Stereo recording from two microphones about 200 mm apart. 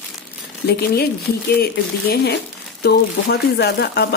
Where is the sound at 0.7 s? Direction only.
50° left (ahead or behind).